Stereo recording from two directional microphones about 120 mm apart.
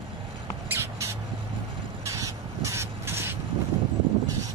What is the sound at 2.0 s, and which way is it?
Crow, 25° right (ahead or behind).